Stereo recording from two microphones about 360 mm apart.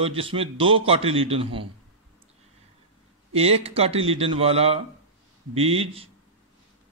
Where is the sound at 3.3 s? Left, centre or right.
Centre.